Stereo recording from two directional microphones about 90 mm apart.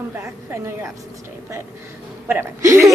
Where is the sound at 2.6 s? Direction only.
30° right (ahead or behind).